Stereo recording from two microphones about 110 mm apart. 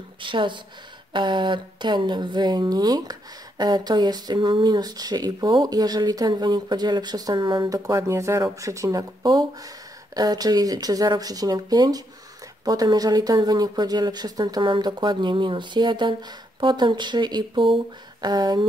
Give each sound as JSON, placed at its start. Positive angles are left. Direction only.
{"t": 0.2, "sound": "a woman's voice", "side_deg": -50}
{"t": 10.1, "sound": "a woman's voice", "side_deg": -35}